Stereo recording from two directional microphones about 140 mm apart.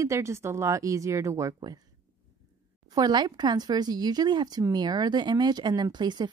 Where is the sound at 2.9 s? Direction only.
30° right (ahead or behind).